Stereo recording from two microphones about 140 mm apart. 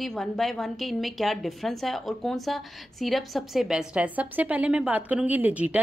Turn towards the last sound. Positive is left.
turn(degrees=-10)  # may be behind; listen again after turning